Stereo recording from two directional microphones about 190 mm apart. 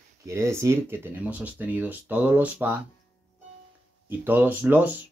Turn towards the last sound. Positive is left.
turn(degrees=-10)  # may be behind; listen again after turning